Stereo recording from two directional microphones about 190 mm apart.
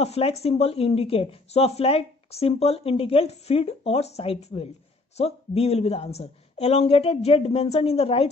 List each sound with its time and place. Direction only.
0.0 s speech: 35° left (ahead or behind)